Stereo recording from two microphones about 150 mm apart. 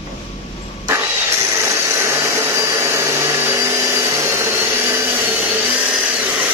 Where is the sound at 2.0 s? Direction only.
20° right (ahead or behind).